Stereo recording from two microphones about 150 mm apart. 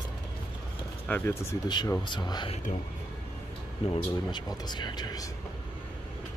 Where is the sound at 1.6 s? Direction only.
30° left (ahead or behind).